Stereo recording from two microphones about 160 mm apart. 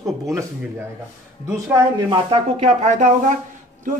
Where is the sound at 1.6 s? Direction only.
20° right (ahead or behind).